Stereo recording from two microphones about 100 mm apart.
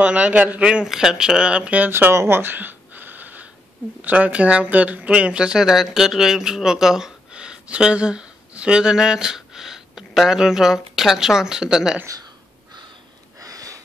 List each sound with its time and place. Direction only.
0.0 s speech: 10° right (ahead or behind)
13.4 s sniff: 35° right (ahead or behind)